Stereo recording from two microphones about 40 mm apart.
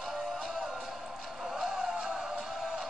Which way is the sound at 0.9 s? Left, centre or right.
Centre.